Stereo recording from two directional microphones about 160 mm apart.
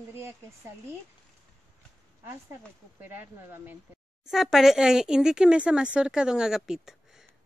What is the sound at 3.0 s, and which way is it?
Speech, 15° right (ahead or behind).